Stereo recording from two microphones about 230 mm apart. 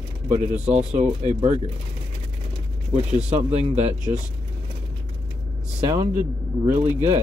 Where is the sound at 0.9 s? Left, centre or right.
Right.